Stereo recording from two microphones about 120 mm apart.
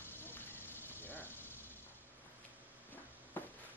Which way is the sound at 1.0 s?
15° left (ahead or behind).